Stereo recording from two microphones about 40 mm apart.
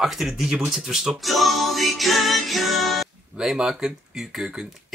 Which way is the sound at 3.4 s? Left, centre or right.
Centre.